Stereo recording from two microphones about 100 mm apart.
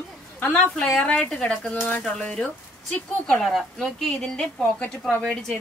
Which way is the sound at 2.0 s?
10° left (ahead or behind).